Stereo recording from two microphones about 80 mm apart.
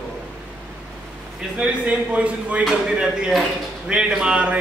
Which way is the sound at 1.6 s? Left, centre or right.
Centre.